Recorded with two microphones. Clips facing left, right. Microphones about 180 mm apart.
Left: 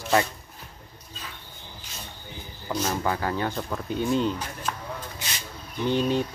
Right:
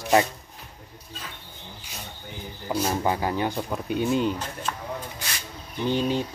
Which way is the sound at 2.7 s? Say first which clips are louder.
Right 2 dB; 10° right (ahead or behind).